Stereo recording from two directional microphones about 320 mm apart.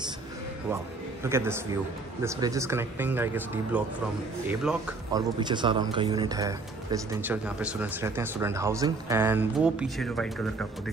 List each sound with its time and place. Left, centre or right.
1.2 s speech: centre